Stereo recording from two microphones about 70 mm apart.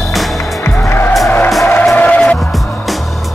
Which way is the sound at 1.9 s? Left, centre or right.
Centre.